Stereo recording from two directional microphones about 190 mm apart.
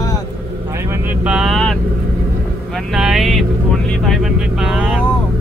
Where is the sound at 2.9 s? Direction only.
Centre (ahead or behind).